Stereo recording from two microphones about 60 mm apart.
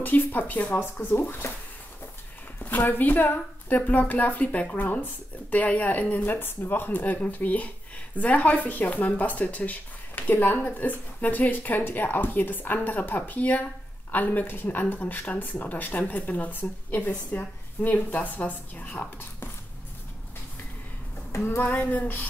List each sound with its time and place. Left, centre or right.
0.0 s speech: left
1.0 s female singing: left
2.6 s speech: left
21.3 s a sound: left
21.6 s female singing: left